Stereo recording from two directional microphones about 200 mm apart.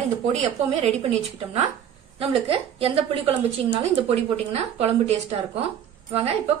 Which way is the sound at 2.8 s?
30° right (ahead or behind).